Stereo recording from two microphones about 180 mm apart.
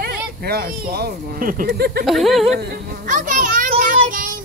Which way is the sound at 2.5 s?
55° right (ahead or behind).